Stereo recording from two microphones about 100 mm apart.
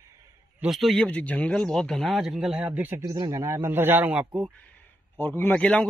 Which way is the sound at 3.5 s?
20° right (ahead or behind).